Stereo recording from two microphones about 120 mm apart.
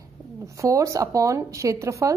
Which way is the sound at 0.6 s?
25° right (ahead or behind).